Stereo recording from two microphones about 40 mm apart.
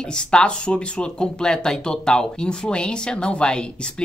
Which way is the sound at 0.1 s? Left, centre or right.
Left.